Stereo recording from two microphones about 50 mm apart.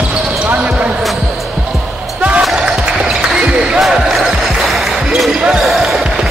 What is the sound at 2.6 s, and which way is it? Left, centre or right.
Basketball bounce, centre.